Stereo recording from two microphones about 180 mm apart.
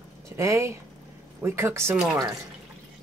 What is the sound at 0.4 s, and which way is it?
Speech, 15° right (ahead or behind).